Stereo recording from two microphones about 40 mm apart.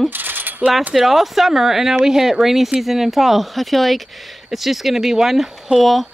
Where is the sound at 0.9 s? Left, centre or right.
Centre.